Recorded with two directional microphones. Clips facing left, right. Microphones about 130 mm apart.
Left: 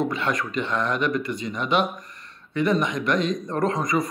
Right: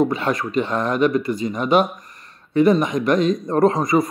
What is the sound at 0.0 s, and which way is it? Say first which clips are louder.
A man's voice: right 5 dB; 40° right (ahead or behind).